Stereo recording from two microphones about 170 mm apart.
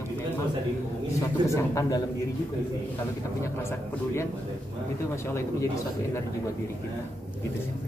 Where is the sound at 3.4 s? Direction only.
15° left (ahead or behind).